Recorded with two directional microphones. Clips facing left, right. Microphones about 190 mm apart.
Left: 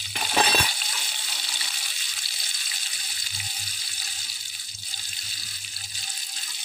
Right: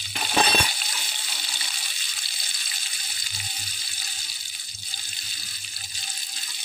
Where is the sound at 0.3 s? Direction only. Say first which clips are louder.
Right 1 dB; 5° left (ahead or behind).